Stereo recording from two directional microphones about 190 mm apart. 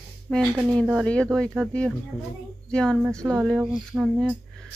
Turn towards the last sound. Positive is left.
turn(degrees=0)  # may be behind; listen again after turning